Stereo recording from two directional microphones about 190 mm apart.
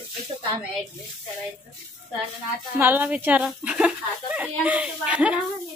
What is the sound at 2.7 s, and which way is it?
Speech, 10° right (ahead or behind).